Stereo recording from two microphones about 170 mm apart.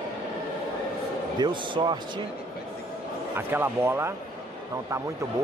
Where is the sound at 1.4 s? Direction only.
30° right (ahead or behind).